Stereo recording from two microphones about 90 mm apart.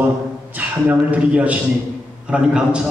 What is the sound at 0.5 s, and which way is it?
A woman's voice, 15° right (ahead or behind).